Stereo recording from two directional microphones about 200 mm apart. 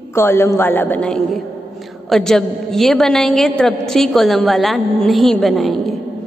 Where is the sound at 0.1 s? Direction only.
10° left (ahead or behind).